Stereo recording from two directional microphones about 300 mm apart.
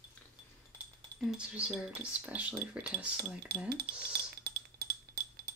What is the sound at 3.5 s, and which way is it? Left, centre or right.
Speech, right.